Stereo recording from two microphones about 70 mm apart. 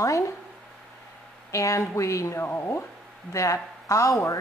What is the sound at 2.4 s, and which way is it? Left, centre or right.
Speech, left.